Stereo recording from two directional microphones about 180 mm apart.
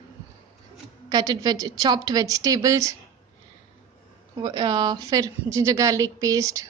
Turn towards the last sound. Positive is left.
turn(degrees=-20)  # may be behind; listen again after turning